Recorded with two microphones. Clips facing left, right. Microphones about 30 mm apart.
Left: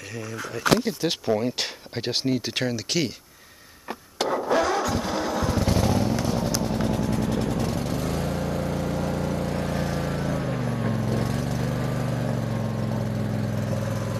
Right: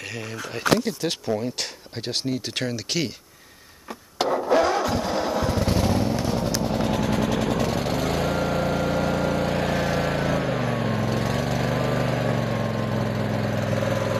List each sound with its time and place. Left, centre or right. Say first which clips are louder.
0.8 s speech: left 1 dB; centre
4.3 s a sound: right 3 dB; centre
5.0 s motorcycle: right 2 dB; centre
6.8 s vehicle: right 2 dB; right
10.4 s vehicle: right 3 dB; right
11.1 s vehicle: right 2 dB; right